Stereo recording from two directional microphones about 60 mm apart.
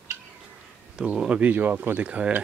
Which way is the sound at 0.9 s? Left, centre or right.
Centre.